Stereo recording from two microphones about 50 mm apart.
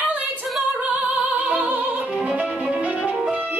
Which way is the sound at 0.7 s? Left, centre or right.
Right.